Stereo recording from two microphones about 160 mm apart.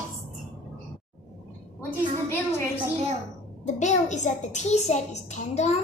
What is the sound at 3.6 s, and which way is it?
A woman's voice, 50° left (ahead or behind).